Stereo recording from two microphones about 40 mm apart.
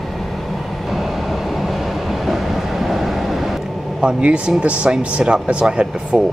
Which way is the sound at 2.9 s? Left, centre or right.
Centre.